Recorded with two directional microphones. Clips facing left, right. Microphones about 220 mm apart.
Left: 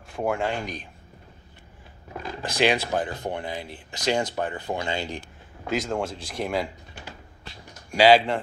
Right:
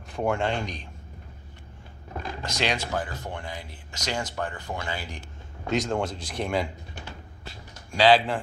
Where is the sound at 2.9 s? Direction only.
20° left (ahead or behind).